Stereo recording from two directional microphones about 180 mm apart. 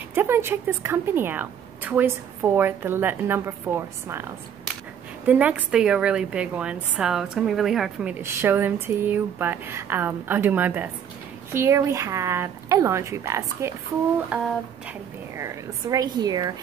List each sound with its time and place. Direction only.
0.1 s a woman's voice: 10° right (ahead or behind)